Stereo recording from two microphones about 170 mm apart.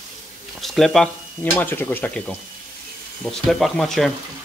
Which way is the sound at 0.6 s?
Centre (ahead or behind).